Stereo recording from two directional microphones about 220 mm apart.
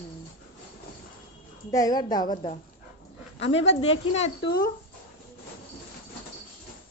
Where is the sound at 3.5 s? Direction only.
30° left (ahead or behind).